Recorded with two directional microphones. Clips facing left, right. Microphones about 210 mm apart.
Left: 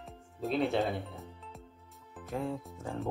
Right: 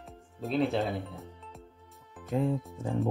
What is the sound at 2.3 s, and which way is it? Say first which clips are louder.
Music: right 6 dB; 20° right (ahead or behind).